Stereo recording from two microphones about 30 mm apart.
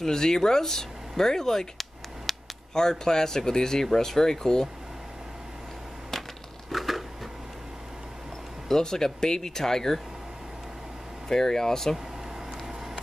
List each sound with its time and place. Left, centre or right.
0.0 s speech: centre
2.3 s a sound: centre
2.7 s speech: left
6.7 s a sound: centre
8.6 s speech: centre
11.2 s speech: centre